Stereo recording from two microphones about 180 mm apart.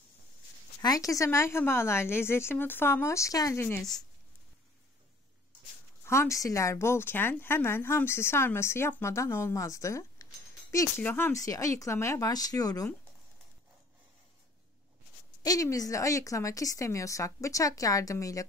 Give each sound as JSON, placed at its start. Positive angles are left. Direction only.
{"t": 0.8, "sound": "speech", "side_deg": 20}
{"t": 6.0, "sound": "speech", "side_deg": 15}
{"t": 15.4, "sound": "speech", "side_deg": 20}